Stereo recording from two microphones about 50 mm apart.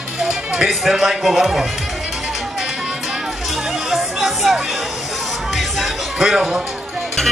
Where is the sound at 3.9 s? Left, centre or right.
Centre.